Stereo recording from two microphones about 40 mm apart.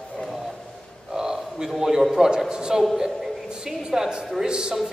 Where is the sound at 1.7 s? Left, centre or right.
Centre.